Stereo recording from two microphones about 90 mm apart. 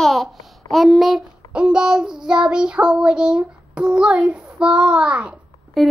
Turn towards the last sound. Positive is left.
turn(degrees=0)  # may be behind; listen again after turning